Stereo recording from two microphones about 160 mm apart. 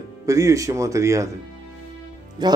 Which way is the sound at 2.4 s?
25° right (ahead or behind).